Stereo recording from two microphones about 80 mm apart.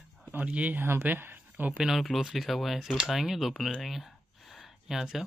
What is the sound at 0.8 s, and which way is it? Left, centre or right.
Speech, right.